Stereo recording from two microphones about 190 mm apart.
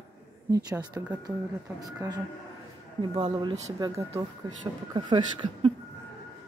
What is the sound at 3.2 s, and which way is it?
Speech, 20° right (ahead or behind).